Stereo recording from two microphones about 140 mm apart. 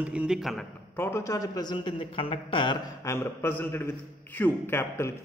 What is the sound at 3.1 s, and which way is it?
A man's voice, 15° left (ahead or behind).